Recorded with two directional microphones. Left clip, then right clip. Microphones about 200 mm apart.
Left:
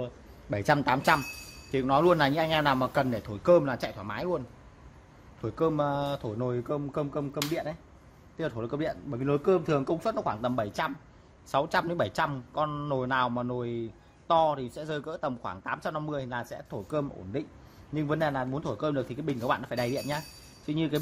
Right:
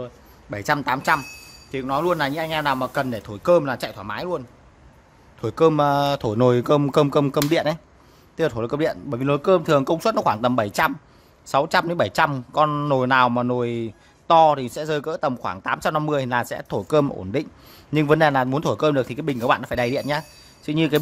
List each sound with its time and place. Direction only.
0.0 s a man's voice: centre (ahead or behind); by 4.4 s 15° right (ahead or behind)
5.4 s speech: 35° right (ahead or behind)
8.4 s a man's voice: 30° right (ahead or behind)